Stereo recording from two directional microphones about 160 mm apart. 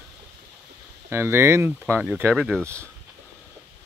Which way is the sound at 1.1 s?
15° right (ahead or behind).